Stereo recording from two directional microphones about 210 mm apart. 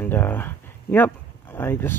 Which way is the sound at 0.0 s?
10° left (ahead or behind).